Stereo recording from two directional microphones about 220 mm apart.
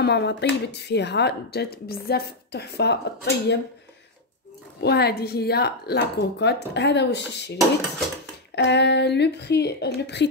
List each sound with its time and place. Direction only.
0.0 s speech: 50° left (ahead or behind)
4.8 s speech: 45° left (ahead or behind)
8.5 s speech: 50° left (ahead or behind)